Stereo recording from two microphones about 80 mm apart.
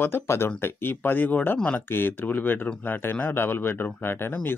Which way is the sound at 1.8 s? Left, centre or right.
Left.